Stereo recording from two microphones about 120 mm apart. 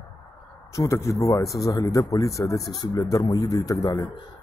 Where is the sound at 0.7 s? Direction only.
25° left (ahead or behind).